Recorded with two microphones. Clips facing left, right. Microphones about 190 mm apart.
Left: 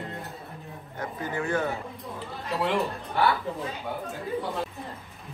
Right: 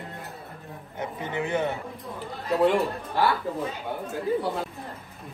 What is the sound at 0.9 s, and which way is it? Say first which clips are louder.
Speech: right 1 dB; 20° right (ahead or behind).